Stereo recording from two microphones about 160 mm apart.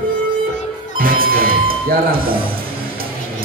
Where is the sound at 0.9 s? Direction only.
65° right (ahead or behind).